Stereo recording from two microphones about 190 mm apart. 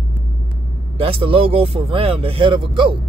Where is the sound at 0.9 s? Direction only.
30° right (ahead or behind).